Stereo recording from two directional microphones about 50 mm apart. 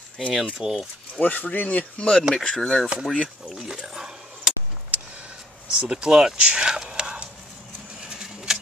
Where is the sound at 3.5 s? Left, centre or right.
Centre.